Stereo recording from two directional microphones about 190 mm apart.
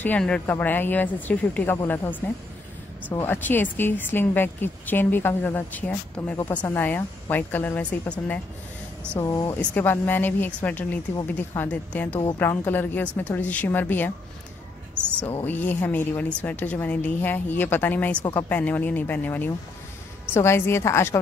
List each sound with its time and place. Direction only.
0.0 s speech: 5° left (ahead or behind)
9.2 s speech: 20° left (ahead or behind)
15.4 s speech: 10° left (ahead or behind)